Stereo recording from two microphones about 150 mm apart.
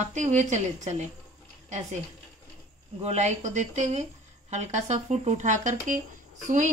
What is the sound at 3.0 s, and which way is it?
Speech, 50° right (ahead or behind).